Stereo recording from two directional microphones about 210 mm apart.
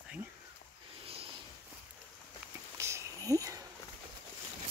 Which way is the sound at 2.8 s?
15° right (ahead or behind).